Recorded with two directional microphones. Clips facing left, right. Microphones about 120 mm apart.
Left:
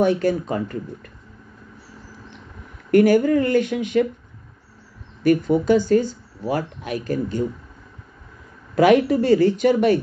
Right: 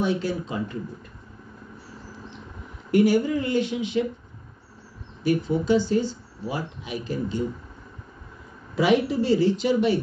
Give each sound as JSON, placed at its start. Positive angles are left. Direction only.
{"t": 0.0, "sound": "speech", "side_deg": 55}
{"t": 2.9, "sound": "speech", "side_deg": 50}
{"t": 5.2, "sound": "speech", "side_deg": 55}
{"t": 8.7, "sound": "speech", "side_deg": 55}